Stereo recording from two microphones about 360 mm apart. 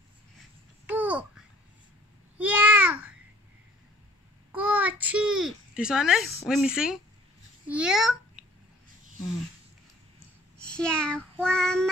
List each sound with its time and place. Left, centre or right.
0.8 s babbling: centre
4.5 s a sound: centre
6.4 s a child's voice: centre
10.6 s child singing: centre